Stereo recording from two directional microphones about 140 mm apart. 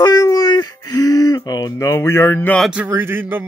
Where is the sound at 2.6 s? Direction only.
10° right (ahead or behind).